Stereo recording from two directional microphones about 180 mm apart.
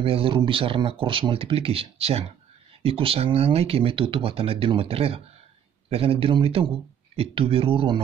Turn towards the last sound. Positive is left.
turn(degrees=-30)  # may be behind; listen again after turning